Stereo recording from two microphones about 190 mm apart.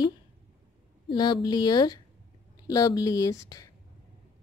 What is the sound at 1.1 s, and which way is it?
A woman's voice, 25° left (ahead or behind).